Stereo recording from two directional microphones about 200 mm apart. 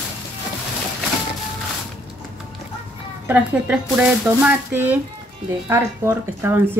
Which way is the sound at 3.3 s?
5° right (ahead or behind).